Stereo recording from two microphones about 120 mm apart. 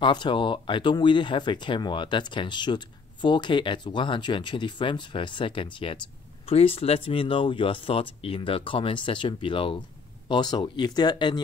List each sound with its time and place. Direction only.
0.0 s speech: 40° left (ahead or behind)